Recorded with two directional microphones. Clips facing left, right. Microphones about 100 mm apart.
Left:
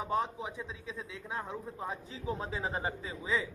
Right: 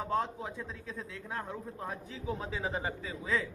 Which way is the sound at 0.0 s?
10° left (ahead or behind).